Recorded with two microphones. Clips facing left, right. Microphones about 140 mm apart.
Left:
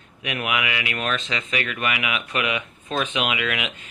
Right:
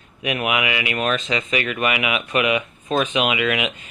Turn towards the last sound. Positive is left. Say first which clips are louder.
# right 5 dB
turn(degrees=-10)  # may be behind; listen again after turning